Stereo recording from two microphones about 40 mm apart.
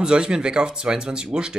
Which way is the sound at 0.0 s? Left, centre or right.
Right.